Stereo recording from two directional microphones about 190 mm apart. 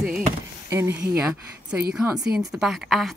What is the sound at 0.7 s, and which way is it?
Speech, 15° right (ahead or behind).